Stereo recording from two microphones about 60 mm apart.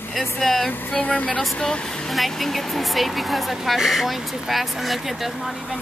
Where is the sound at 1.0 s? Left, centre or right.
Left.